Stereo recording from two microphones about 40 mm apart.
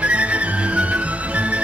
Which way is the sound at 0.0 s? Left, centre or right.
Right.